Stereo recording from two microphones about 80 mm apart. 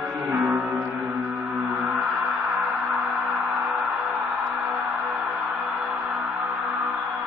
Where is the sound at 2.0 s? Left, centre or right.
Centre.